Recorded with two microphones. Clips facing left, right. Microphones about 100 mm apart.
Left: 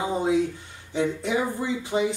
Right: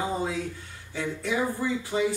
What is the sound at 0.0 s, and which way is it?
Speech, 20° left (ahead or behind).